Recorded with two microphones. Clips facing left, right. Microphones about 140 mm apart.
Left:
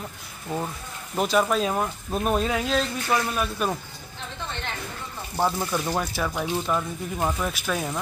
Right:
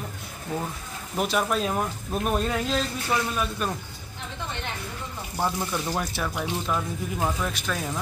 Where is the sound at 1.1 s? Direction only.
Centre (ahead or behind).